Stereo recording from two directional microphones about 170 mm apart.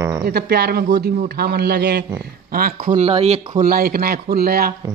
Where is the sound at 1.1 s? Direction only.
60° right (ahead or behind).